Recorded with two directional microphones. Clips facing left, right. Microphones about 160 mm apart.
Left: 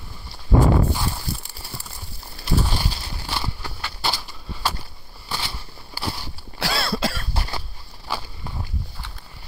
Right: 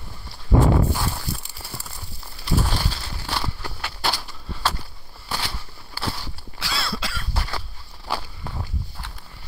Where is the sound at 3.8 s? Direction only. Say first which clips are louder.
Right 1 dB; 5° right (ahead or behind).